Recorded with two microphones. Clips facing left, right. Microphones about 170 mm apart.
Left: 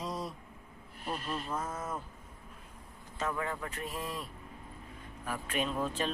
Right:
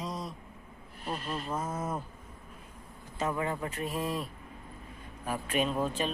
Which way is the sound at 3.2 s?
20° right (ahead or behind).